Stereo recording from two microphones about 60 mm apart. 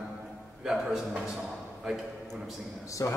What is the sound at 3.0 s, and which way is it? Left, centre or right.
Speech, left.